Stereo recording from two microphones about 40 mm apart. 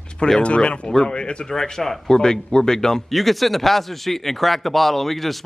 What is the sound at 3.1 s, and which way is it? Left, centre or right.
A man's voice, centre.